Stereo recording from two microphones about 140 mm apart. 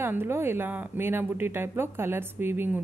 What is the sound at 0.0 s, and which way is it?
A woman's voice, 15° right (ahead or behind).